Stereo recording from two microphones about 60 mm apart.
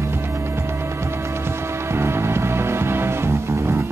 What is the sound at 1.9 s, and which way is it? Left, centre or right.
Music, right.